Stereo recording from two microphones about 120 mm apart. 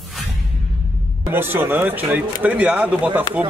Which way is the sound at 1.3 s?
15° right (ahead or behind).